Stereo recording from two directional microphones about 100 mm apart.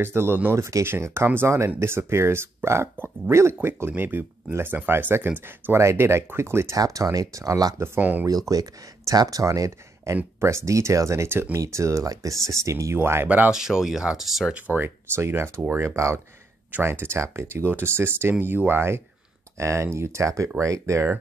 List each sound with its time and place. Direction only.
0.0 s speech: 25° right (ahead or behind)
6.8 s speech: 35° right (ahead or behind)
7.8 s speech: 20° right (ahead or behind)
8.3 s speech: 40° right (ahead or behind); by 13.5 s 20° right (ahead or behind)
13.5 s speech: 5° right (ahead or behind)
14.5 s speech: 20° right (ahead or behind)